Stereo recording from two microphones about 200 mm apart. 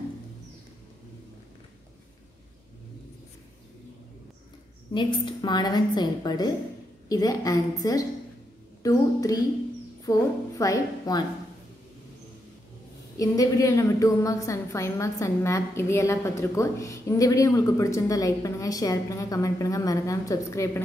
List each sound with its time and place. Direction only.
4.9 s a woman's voice: 20° left (ahead or behind)
13.2 s a woman's voice: 15° left (ahead or behind)